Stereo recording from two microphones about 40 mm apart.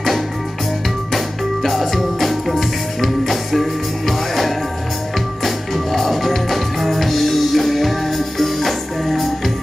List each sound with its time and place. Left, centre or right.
1.1 s music: centre